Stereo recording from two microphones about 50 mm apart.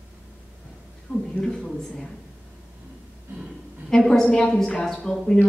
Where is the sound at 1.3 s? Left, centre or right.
Centre.